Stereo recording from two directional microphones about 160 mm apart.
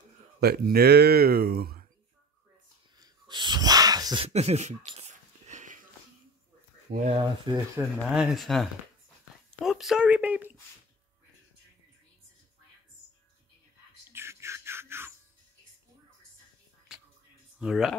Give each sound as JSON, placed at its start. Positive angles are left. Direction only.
{"t": 0.4, "sound": "speech", "side_deg": -75}
{"t": 3.0, "sound": "sneeze", "side_deg": -30}
{"t": 4.2, "sound": "speech", "side_deg": -40}
{"t": 4.8, "sound": "a sound", "side_deg": -40}
{"t": 6.9, "sound": "speech", "side_deg": -50}
{"t": 7.5, "sound": "speech", "side_deg": -30}
{"t": 8.0, "sound": "speech", "side_deg": -5}
{"t": 14.1, "sound": "music", "side_deg": -15}
{"t": 16.9, "sound": "music", "side_deg": -5}
{"t": 17.6, "sound": "speech", "side_deg": -5}